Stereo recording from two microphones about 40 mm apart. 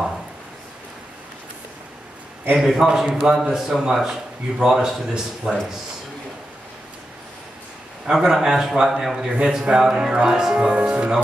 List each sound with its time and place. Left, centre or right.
2.5 s a man's voice: centre
8.1 s a man's voice: centre
10.6 s speech: right